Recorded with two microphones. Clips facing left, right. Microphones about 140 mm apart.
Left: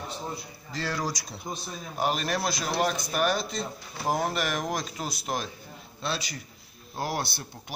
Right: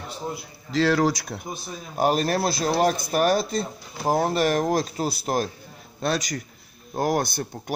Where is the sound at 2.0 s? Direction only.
40° right (ahead or behind).